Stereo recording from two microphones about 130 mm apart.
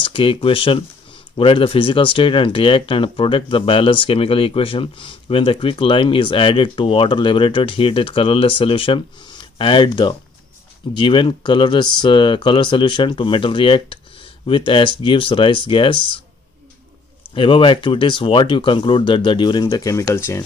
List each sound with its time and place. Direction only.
0.0 s speech: 40° left (ahead or behind)
17.3 s speech: 40° left (ahead or behind); by 20.4 s 20° left (ahead or behind)